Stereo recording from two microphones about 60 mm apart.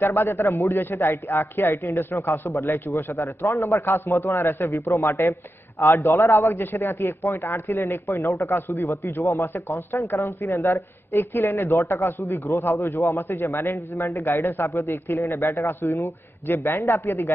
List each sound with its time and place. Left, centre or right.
0.0 s a man's voice: left
0.6 s speech: left
0.9 s a man's voice: left
4.2 s speech: left
4.6 s a man's voice: left
5.8 s a man's voice: left